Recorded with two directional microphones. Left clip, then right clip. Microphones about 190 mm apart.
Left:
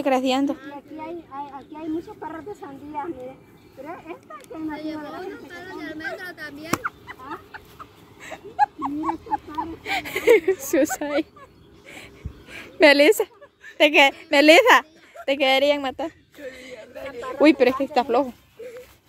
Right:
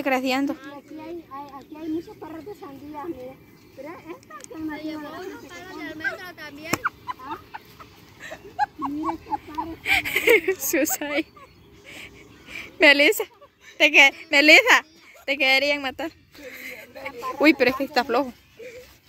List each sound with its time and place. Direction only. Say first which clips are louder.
0.0 s a woman's voice: left 2 dB; 15° left (ahead or behind)
4.9 s a woman's voice: left 2 dB; 30° left (ahead or behind)
5.2 s speech: left 2 dB; 60° left (ahead or behind)
8.5 s dog: left 4 dB; 5° left (ahead or behind)
9.8 s a woman's voice: even; 15° left (ahead or behind)
11.9 s a sound: right 1 dB; 25° left (ahead or behind)
13.7 s a woman's voice: right 1 dB; 25° left (ahead or behind)
16.1 s a sound: left 2 dB; 10° left (ahead or behind)
17.0 s speech: left 2 dB; 15° left (ahead or behind)